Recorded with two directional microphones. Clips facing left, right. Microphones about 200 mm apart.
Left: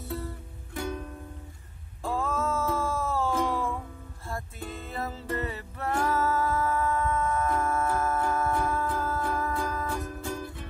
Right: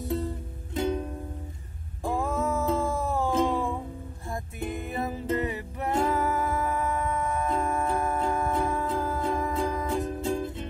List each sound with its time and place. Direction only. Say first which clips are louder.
0.0 s music: right 6 dB; 15° right (ahead or behind)